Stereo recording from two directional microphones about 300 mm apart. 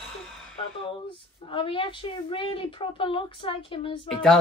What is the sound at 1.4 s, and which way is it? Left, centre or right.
A woman's voice, centre.